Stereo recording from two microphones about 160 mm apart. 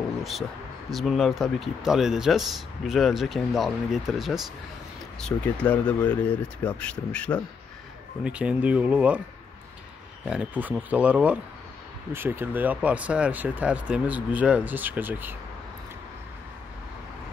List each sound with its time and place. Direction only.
0.2 s speech: centre (ahead or behind)
8.2 s speech: 5° right (ahead or behind)
10.2 s speech: 5° right (ahead or behind)